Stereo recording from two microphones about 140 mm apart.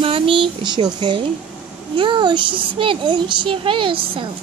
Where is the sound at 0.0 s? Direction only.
40° right (ahead or behind).